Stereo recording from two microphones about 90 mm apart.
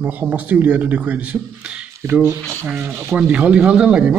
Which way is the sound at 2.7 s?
15° right (ahead or behind).